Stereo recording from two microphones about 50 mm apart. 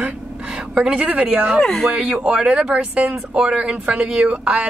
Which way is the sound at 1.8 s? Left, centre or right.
Right.